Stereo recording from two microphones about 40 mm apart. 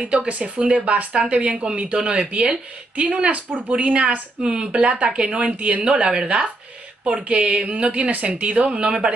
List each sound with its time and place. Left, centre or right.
0.0 s a woman's voice: right
5.9 s a woman's voice: right